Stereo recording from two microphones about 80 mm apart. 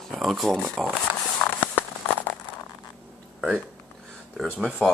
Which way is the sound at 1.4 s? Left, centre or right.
Left.